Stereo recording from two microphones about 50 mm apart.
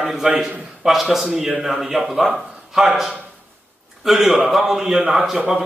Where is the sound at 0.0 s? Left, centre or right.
Centre.